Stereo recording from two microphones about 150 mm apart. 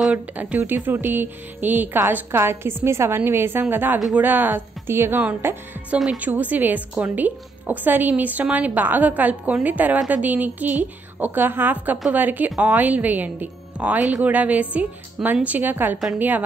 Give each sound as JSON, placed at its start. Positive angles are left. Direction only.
{"t": 0.0, "sound": "speech", "side_deg": -10}